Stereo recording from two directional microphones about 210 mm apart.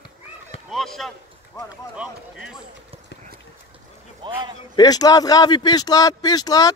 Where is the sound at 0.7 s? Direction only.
Centre (ahead or behind).